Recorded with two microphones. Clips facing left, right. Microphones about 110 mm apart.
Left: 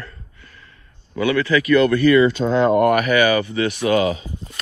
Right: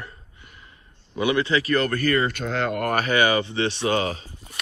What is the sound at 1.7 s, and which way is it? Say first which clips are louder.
Speech: left 11 dB; 45° right (ahead or behind).